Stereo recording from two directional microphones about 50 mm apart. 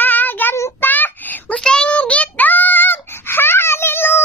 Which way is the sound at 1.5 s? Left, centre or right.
Centre.